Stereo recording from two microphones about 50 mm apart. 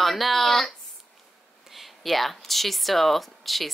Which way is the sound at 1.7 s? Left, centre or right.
Centre.